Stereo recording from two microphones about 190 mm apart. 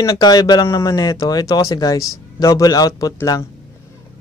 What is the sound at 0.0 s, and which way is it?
Speech, 20° left (ahead or behind).